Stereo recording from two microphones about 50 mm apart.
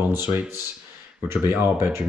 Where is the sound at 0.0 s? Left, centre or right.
Right.